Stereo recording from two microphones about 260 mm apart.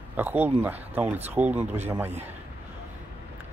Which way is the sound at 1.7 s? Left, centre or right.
Right.